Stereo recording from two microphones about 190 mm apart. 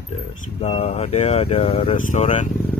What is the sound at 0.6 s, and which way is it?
Speech, 35° left (ahead or behind).